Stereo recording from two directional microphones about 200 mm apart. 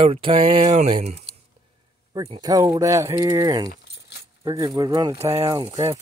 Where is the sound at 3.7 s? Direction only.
55° left (ahead or behind).